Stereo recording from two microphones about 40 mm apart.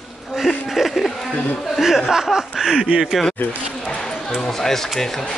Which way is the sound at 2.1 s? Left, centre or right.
Centre.